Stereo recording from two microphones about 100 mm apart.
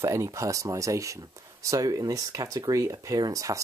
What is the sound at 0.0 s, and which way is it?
Speech, 30° right (ahead or behind).